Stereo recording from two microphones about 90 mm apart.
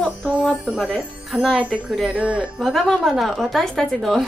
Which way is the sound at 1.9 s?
10° right (ahead or behind).